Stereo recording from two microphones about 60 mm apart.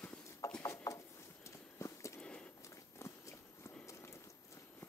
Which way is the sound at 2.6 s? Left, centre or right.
Left.